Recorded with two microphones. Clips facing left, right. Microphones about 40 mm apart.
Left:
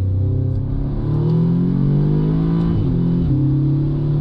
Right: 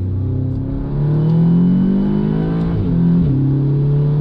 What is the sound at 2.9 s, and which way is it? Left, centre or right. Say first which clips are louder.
Music: right 4 dB; right.